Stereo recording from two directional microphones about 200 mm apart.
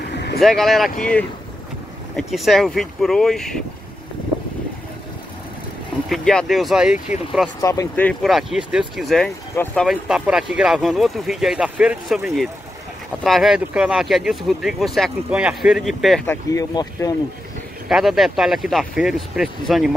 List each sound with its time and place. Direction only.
0.1 s vehicle: 55° left (ahead or behind)
0.4 s speech: centre (ahead or behind)
2.1 s speech: centre (ahead or behind)
6.0 s speech: centre (ahead or behind)
7.6 s speech: 15° left (ahead or behind)
16.3 s speech: 15° left (ahead or behind)
17.8 s speech: centre (ahead or behind)